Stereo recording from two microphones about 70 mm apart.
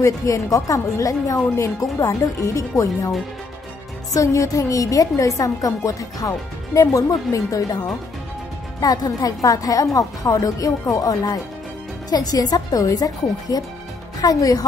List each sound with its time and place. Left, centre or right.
0.0 s a woman's voice: left
4.1 s a woman's voice: left